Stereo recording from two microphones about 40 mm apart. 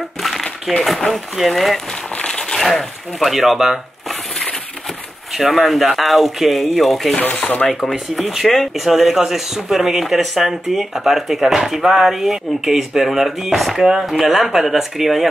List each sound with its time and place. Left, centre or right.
0.8 s speech: centre
2.2 s crumpling: centre
2.6 s speech: centre
3.3 s speech: centre
4.1 s a sound: centre
5.3 s speech: centre
7.4 s chopping: left
7.9 s speech: centre